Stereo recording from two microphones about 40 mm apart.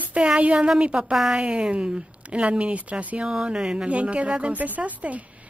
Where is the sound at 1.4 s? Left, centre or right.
Right.